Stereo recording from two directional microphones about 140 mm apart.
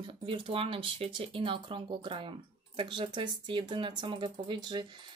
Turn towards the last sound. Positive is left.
turn(degrees=-35)  # may be behind; listen again after turning